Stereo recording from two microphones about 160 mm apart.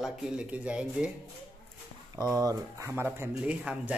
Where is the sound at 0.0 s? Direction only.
5° right (ahead or behind).